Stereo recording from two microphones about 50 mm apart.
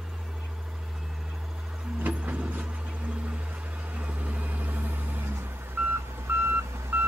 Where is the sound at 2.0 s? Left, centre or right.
Right.